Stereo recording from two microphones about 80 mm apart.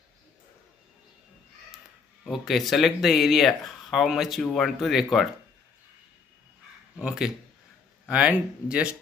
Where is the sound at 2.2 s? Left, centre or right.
Centre.